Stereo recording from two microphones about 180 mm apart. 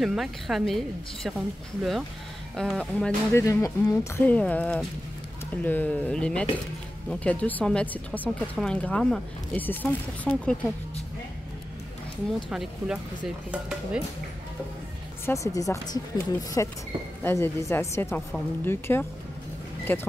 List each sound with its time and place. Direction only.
0.0 s speech: centre (ahead or behind)
3.3 s speech: 15° left (ahead or behind)
12.4 s speech: 5° right (ahead or behind)
15.2 s speech: 15° left (ahead or behind)